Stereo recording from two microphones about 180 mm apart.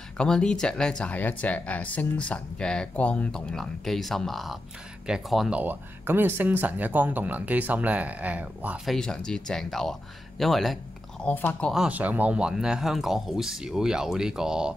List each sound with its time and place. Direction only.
0.2 s speech: 5° left (ahead or behind)